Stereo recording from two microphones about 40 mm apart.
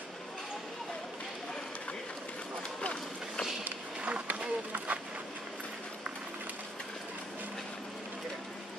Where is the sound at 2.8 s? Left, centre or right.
Left.